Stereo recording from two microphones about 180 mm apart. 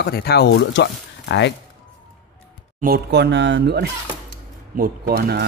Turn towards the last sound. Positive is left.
turn(degrees=-60)  # may be behind; listen again after turning